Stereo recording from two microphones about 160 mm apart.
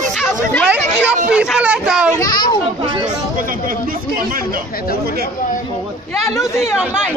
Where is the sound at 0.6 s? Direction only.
5° right (ahead or behind).